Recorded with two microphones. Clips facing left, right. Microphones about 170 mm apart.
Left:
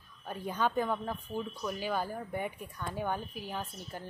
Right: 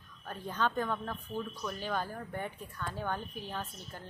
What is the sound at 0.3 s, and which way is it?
A woman's voice, 10° left (ahead or behind).